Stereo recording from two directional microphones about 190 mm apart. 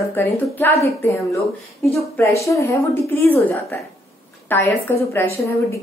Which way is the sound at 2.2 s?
15° left (ahead or behind).